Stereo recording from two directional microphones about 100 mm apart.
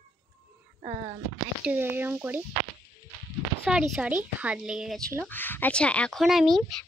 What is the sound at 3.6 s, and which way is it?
A woman's voice, 10° right (ahead or behind).